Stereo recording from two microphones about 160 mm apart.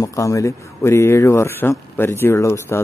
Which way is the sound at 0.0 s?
20° left (ahead or behind).